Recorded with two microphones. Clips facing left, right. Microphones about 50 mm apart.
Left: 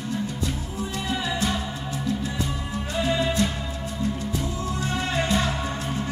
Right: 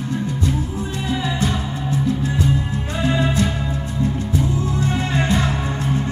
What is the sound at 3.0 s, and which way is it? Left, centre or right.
Music, right.